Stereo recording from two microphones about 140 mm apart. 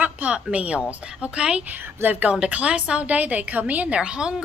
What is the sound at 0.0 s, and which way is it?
A woman's voice, 10° right (ahead or behind).